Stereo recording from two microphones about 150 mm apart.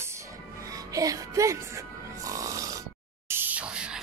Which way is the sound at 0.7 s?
25° right (ahead or behind).